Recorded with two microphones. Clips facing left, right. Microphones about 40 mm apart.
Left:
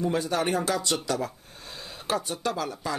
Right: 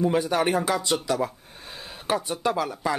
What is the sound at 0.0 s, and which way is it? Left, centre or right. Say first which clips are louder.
Speech: right 4 dB; centre.